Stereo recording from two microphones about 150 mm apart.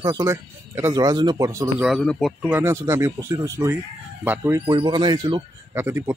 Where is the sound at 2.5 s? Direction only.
15° right (ahead or behind).